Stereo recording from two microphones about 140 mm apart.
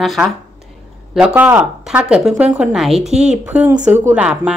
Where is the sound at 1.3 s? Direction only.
10° right (ahead or behind).